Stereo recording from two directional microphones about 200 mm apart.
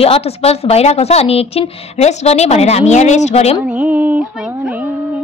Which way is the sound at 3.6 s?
5° right (ahead or behind).